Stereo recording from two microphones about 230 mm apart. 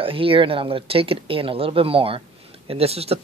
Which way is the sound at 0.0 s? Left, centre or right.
Right.